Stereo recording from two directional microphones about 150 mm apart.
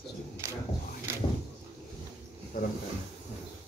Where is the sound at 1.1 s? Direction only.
15° right (ahead or behind).